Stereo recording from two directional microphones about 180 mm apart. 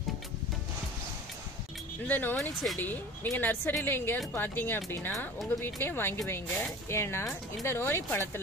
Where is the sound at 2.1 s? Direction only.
10° left (ahead or behind).